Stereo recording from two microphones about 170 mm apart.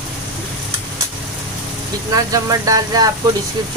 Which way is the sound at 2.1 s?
20° right (ahead or behind).